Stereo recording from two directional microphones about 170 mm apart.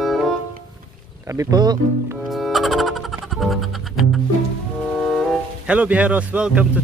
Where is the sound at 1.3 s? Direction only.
20° right (ahead or behind).